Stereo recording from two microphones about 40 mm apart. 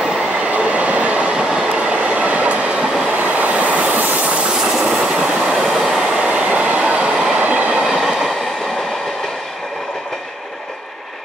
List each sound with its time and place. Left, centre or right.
0.5 s train: right
1.4 s train: centre
1.8 s train: right
4.8 s train: right
6.2 s train: right
7.7 s train: centre